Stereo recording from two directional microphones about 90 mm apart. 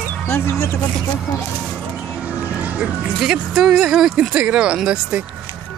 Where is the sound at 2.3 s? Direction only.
15° right (ahead or behind).